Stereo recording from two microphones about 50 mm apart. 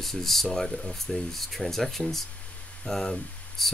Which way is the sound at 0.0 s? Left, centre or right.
Centre.